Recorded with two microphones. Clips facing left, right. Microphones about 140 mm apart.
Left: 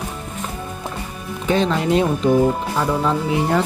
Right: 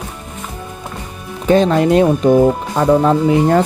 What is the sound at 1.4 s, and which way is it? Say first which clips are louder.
Speech: right 7 dB; 45° right (ahead or behind).